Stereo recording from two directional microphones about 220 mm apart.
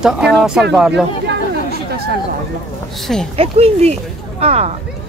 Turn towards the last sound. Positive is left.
turn(degrees=-30)  # may be behind; listen again after turning